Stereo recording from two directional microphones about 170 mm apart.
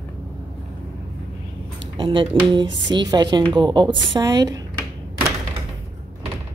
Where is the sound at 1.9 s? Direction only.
25° right (ahead or behind).